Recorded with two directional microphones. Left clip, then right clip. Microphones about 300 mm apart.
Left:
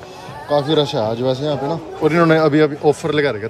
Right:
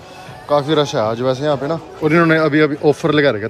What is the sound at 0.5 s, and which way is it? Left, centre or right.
A man's voice, centre.